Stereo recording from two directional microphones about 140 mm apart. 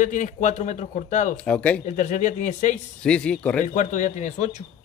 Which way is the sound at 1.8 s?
65° left (ahead or behind).